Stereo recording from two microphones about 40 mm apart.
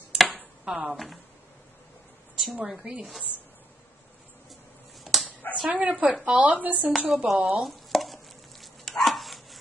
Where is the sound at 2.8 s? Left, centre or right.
Right.